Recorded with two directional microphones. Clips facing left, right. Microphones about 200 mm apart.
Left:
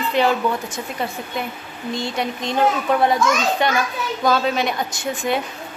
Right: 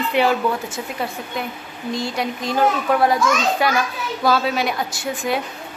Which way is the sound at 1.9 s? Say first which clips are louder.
Even; centre (ahead or behind).